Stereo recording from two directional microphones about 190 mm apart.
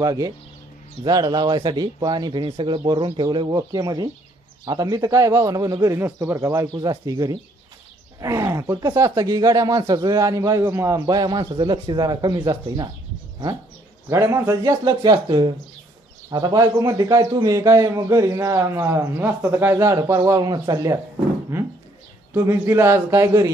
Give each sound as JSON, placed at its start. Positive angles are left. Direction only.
{"t": 0.0, "sound": "speech", "side_deg": -20}
{"t": 14.0, "sound": "speech", "side_deg": -15}
{"t": 21.5, "sound": "a sound", "side_deg": -10}
{"t": 22.3, "sound": "speech", "side_deg": -15}